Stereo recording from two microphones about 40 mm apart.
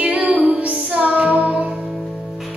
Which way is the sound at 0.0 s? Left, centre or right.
Right.